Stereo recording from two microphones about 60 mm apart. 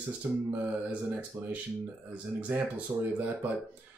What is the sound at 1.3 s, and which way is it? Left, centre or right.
Speech, right.